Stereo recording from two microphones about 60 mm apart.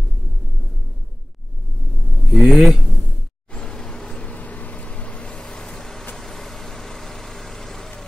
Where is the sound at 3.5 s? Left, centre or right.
Centre.